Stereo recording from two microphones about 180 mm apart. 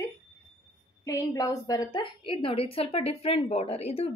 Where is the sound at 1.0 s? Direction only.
15° left (ahead or behind).